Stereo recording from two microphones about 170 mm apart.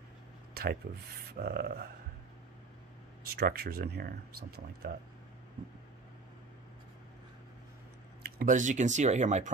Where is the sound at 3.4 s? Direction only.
65° right (ahead or behind).